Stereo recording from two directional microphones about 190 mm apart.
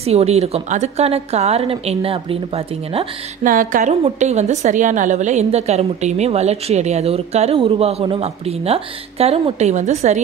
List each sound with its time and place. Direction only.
0.0 s a woman's voice: 35° right (ahead or behind)
3.4 s a woman's voice: 45° right (ahead or behind)